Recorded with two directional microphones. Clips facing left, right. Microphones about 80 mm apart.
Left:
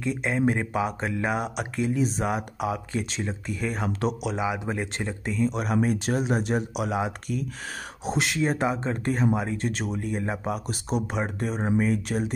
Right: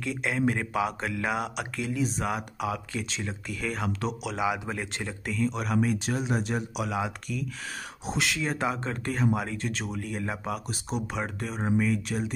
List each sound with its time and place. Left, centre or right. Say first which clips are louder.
0.0 s speech: left 3 dB; left
4.4 s speech: left 1 dB; left
11.3 s speech: left 4 dB; left
11.7 s speech: left 1 dB; left